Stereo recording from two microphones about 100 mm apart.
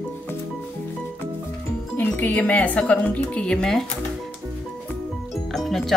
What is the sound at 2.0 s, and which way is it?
Speech, 15° left (ahead or behind).